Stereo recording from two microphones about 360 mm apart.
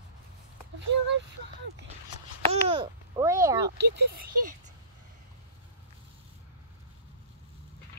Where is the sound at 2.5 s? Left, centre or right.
Centre.